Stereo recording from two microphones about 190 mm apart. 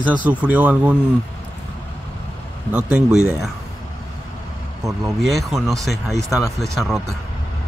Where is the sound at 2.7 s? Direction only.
5° right (ahead or behind).